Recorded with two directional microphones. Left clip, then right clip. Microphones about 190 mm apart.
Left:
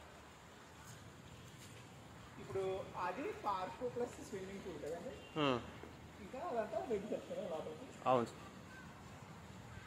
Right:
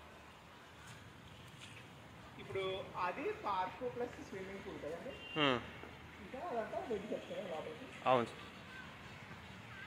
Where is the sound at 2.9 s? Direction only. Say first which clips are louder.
Right 3 dB; 90° left.